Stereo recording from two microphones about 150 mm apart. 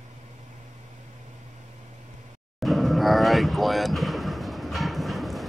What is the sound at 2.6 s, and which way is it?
Vehicle, centre (ahead or behind).